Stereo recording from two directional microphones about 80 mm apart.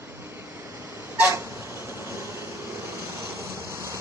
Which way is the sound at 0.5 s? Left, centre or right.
Right.